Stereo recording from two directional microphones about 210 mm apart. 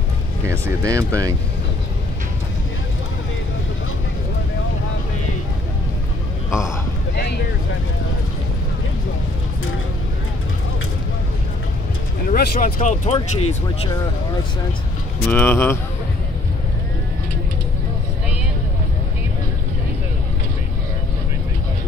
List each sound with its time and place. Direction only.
0.5 s speech: 15° right (ahead or behind)
12.3 s speech: 40° left (ahead or behind)
12.8 s speech: 30° left (ahead or behind)
15.2 s speech: 10° left (ahead or behind)